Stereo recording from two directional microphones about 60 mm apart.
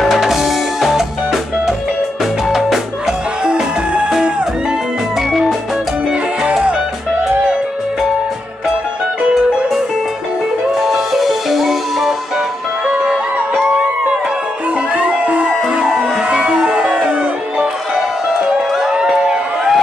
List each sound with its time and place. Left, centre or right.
0.0 s music: centre
6.4 s music: centre
10.8 s music: centre
12.8 s music: centre
15.0 s music: right
15.7 s music: centre